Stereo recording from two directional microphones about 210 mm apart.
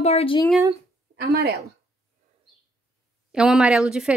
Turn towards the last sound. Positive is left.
turn(degrees=-5)  # may be behind; listen again after turning